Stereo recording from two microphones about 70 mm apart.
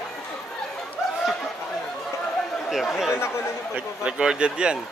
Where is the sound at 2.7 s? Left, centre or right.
Centre.